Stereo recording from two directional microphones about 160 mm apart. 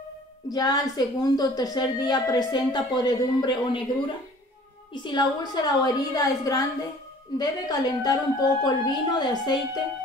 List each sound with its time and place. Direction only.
0.5 s a woman's voice: 25° left (ahead or behind)